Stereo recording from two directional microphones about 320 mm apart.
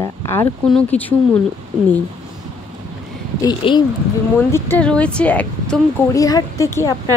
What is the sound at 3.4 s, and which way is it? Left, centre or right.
Speech, centre.